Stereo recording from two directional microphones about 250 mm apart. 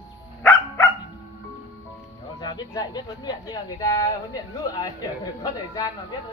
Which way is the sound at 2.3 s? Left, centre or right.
Centre.